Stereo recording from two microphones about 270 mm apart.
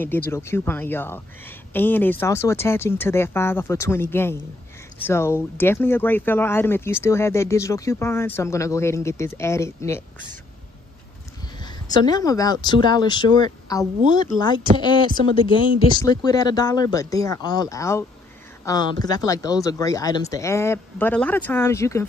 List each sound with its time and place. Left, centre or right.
0.0 s speech: centre
11.6 s speech: centre